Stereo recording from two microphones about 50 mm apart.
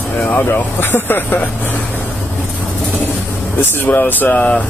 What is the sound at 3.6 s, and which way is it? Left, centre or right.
Speech, left.